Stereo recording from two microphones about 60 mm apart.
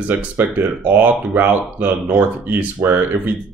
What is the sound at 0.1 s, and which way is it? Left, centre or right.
Speech, right.